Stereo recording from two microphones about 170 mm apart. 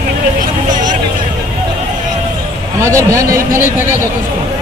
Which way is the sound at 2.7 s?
15° right (ahead or behind).